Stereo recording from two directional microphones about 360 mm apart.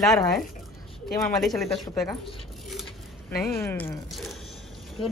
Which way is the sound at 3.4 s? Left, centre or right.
Centre.